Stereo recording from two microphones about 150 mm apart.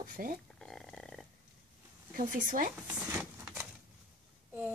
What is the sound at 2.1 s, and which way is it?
Speech, 65° right (ahead or behind).